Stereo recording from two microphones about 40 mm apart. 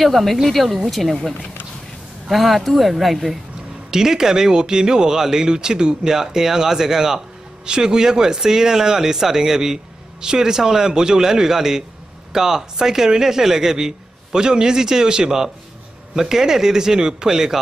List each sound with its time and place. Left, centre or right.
0.0 s speech: centre
2.2 s speech: centre
3.9 s speech: centre